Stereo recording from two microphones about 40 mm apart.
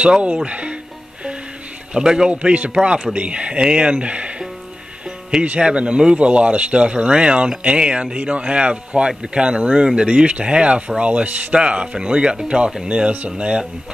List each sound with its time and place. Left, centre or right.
0.0 s a man's voice: right
2.0 s speech: centre
2.3 s a man's voice: right
5.4 s speech: right